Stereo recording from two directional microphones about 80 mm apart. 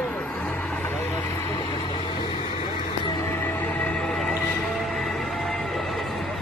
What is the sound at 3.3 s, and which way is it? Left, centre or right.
Music, left.